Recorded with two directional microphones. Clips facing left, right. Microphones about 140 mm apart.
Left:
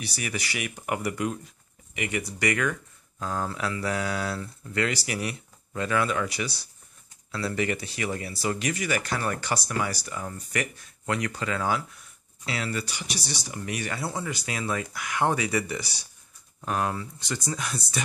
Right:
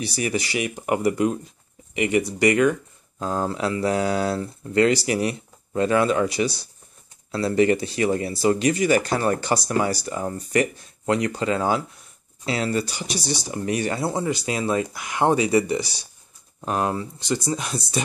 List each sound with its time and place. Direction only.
0.0 s speech: 30° right (ahead or behind)